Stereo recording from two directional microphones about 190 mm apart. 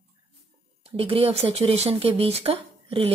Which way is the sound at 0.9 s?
30° right (ahead or behind).